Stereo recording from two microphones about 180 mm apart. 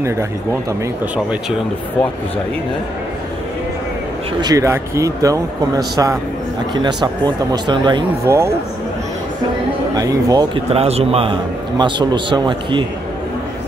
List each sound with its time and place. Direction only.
4.4 s speech: 20° right (ahead or behind)
8.3 s speech: 15° right (ahead or behind)
9.9 s speech: 20° right (ahead or behind)
10.7 s a man's voice: 35° right (ahead or behind)